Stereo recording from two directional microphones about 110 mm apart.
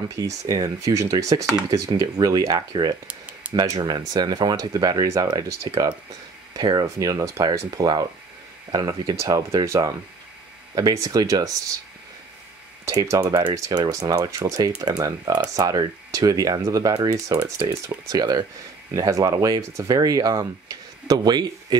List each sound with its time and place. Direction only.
0.2 s speech: 30° right (ahead or behind)
3.1 s a sound: 15° right (ahead or behind)
3.5 s speech: 35° right (ahead or behind)
12.9 s speech: 30° right (ahead or behind)